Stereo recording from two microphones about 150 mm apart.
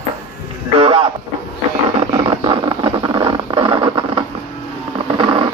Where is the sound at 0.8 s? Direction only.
35° right (ahead or behind).